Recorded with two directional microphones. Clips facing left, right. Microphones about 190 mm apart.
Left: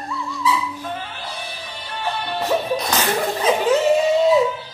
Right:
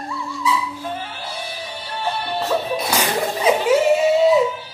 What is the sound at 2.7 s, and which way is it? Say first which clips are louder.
Slap: even; 10° right (ahead or behind).